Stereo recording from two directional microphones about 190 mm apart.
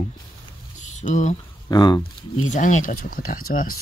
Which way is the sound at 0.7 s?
40° left (ahead or behind).